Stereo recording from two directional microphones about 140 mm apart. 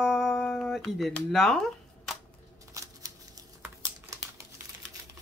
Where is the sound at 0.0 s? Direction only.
Centre (ahead or behind).